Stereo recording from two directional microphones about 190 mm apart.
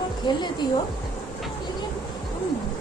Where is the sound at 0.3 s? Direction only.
25° left (ahead or behind).